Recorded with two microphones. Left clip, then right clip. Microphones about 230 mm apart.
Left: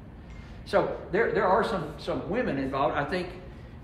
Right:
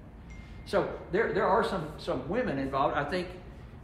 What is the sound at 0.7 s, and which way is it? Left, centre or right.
A man's voice, centre.